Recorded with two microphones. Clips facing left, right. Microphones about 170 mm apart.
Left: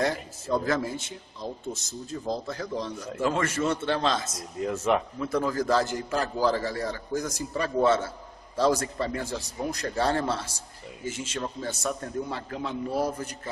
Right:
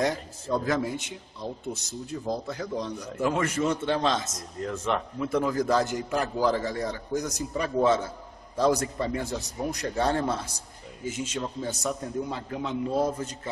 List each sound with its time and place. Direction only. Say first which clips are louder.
0.7 s a man's voice: even; 15° right (ahead or behind)
4.6 s speech: left 3 dB; 5° left (ahead or behind)
5.2 s a man's voice: right 1 dB; 15° right (ahead or behind)